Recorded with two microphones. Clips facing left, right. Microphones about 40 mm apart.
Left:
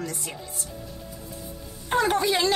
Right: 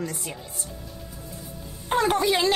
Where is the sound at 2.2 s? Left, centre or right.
Right.